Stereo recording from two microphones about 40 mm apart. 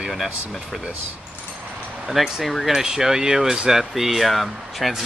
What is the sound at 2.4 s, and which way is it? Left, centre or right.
Speech, centre.